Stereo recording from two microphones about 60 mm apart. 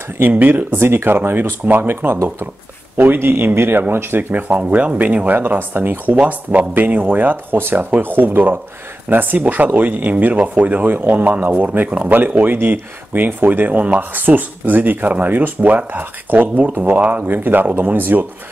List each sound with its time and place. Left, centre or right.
0.2 s speech: right